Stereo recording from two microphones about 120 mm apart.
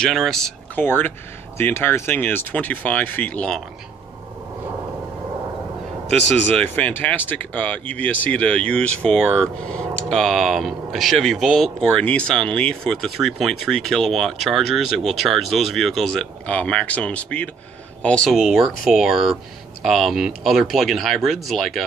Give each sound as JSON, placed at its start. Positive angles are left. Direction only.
{"t": 0.0, "sound": "speech", "side_deg": 0}
{"t": 0.7, "sound": "speech", "side_deg": 15}
{"t": 6.5, "sound": "speech", "side_deg": 10}
{"t": 18.3, "sound": "speech", "side_deg": -5}